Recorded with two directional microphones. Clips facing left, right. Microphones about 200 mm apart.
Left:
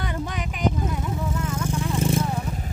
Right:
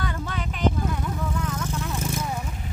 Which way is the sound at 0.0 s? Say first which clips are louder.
Left 1 dB; 20° left (ahead or behind).